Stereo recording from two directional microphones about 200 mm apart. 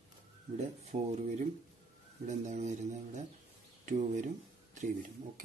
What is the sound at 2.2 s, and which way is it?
Speech, 35° right (ahead or behind).